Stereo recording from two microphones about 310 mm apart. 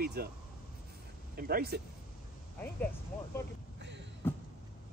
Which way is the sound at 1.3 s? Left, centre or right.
Right.